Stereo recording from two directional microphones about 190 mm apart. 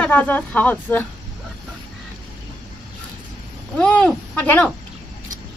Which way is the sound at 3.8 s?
5° left (ahead or behind).